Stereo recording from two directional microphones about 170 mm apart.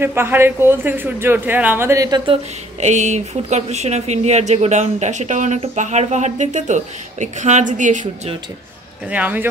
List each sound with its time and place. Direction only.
0.0 s a man's voice: 15° right (ahead or behind)
2.8 s speech: 45° right (ahead or behind)
9.1 s a man's voice: 10° right (ahead or behind)